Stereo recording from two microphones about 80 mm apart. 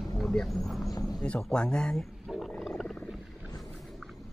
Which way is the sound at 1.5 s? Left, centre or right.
Centre.